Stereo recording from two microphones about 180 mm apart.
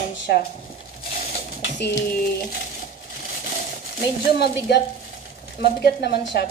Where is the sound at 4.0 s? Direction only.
70° left (ahead or behind).